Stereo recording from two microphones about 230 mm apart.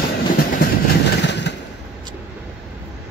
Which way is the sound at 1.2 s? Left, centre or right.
Left.